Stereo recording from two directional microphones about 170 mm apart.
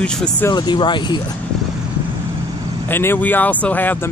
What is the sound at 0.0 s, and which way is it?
Speech, 5° left (ahead or behind).